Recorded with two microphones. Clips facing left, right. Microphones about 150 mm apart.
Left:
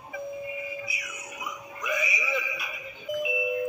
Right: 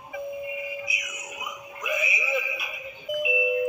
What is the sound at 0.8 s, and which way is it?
Music, 15° right (ahead or behind).